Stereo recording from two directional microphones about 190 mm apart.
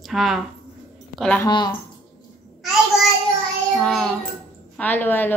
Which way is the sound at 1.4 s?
20° left (ahead or behind).